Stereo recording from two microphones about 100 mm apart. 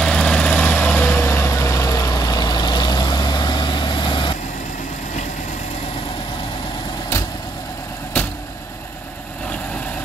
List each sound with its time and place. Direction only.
0.0 s vehicle: 10° left (ahead or behind); by 4.3 s 50° left (ahead or behind)